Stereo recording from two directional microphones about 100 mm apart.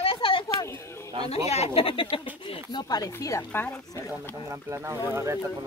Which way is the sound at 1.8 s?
65° left (ahead or behind).